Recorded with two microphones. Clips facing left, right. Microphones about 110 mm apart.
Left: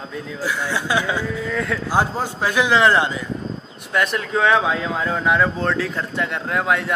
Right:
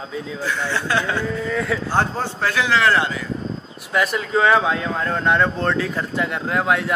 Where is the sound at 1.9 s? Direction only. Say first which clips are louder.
Left 1 dB; 10° left (ahead or behind).